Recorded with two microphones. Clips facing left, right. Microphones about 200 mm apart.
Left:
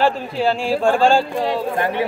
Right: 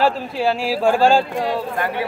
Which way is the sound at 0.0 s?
5° right (ahead or behind).